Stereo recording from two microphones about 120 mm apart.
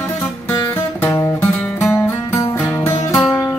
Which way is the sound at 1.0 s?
20° left (ahead or behind).